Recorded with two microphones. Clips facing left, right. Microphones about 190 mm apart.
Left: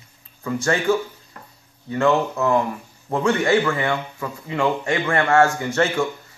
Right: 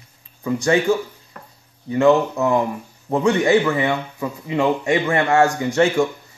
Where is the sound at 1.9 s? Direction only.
15° right (ahead or behind).